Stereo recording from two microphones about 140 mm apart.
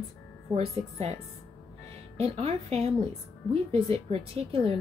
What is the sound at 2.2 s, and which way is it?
Speech, 45° right (ahead or behind).